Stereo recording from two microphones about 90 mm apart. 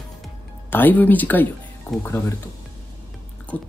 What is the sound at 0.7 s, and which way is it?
Speech, 20° left (ahead or behind).